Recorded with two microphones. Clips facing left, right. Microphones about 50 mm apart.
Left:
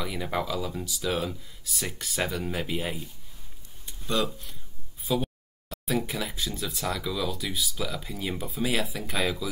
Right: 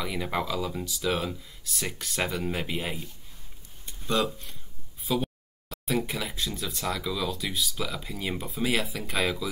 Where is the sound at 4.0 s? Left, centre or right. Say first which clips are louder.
Right 1 dB; centre.